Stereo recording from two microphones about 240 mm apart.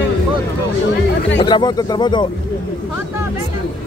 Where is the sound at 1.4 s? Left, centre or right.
Centre.